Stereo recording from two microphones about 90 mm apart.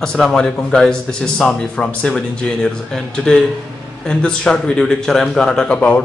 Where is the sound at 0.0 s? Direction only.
5° left (ahead or behind).